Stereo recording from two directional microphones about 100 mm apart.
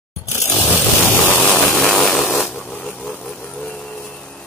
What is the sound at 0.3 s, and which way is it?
Scrape, 25° left (ahead or behind).